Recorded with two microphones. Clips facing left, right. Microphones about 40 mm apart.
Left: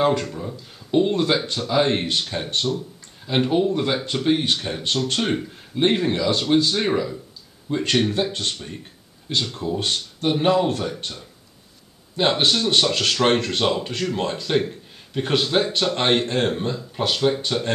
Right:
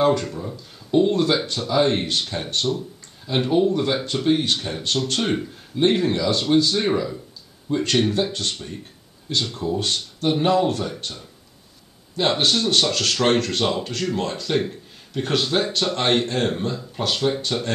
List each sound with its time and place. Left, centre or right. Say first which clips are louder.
0.0 s speech: right 1 dB; centre
5.8 s speech: right 1 dB; centre